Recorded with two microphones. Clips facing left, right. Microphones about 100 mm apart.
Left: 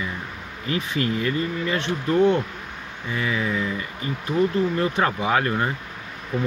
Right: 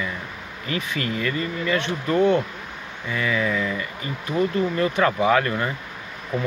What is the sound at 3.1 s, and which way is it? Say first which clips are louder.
Speech: right 2 dB; 20° left (ahead or behind).